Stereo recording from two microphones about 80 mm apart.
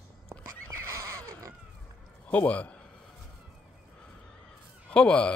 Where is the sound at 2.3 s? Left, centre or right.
Centre.